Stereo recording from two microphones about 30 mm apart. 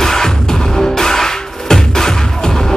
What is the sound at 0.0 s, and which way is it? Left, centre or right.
Music, centre.